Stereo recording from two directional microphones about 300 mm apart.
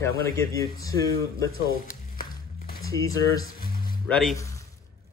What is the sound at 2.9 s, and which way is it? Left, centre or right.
Speech, centre.